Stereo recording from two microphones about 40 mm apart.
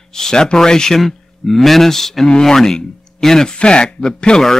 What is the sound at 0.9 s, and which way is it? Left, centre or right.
Speech, centre.